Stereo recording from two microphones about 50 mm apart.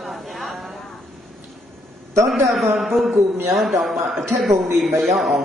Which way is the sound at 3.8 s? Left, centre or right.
Centre.